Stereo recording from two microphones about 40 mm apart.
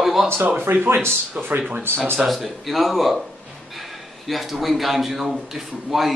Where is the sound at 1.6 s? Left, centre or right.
Right.